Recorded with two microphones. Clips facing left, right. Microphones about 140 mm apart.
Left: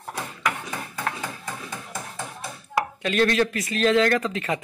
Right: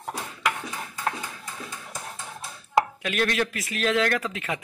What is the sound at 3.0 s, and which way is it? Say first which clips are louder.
Speech: left 5 dB; 5° right (ahead or behind).